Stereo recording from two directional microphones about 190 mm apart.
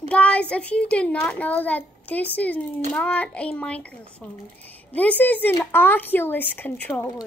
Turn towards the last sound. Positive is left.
turn(degrees=10)  # may be behind; listen again after turning